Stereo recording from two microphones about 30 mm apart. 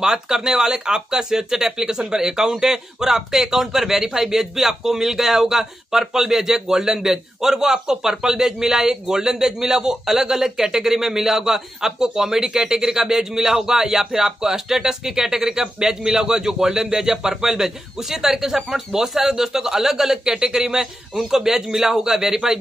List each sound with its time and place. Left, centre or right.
0.0 s a man's voice: centre